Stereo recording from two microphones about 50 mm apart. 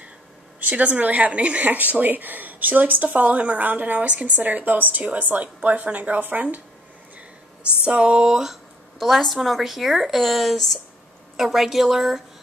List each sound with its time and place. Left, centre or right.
0.6 s speech: right
7.8 s speech: right
8.3 s speech: centre
9.0 s speech: centre